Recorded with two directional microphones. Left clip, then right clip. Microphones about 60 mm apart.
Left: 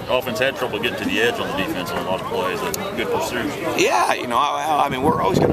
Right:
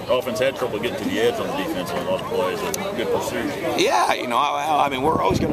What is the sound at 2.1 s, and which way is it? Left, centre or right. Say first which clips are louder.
Speech: right 1 dB; left.